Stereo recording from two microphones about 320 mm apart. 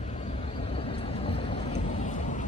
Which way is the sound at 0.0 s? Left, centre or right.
Centre.